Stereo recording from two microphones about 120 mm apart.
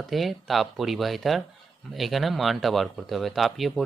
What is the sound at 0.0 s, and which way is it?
Speech, centre (ahead or behind).